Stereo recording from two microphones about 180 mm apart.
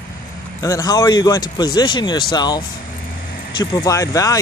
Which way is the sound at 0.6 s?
20° left (ahead or behind).